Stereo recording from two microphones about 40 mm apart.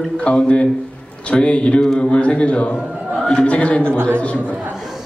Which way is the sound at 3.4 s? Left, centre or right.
Left.